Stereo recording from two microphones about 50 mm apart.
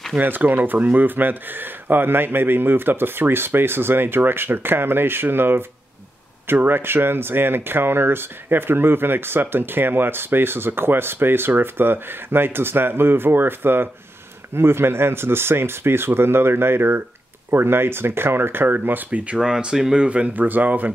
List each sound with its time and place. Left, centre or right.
0.2 s speech: right
19.0 s speech: right
20.4 s speech: right